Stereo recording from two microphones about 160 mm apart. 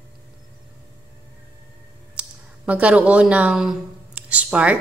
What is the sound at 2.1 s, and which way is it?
Speech, 5° right (ahead or behind).